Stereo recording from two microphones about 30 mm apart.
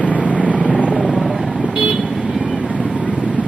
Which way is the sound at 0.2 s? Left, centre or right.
Right.